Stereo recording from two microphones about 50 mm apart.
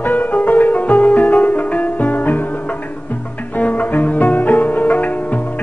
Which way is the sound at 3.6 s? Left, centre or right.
Left.